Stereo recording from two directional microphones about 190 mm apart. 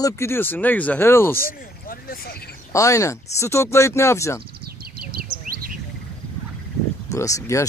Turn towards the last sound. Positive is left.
turn(degrees=15)  # may be behind; listen again after turning